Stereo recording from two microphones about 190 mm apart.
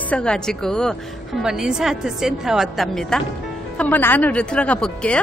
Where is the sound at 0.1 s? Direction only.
5° left (ahead or behind).